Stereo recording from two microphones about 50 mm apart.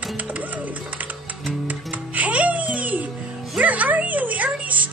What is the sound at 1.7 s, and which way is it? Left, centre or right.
Music, right.